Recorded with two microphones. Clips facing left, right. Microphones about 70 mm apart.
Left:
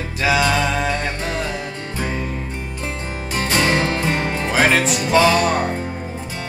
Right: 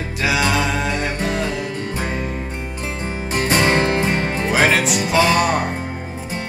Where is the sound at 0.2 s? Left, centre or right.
Centre.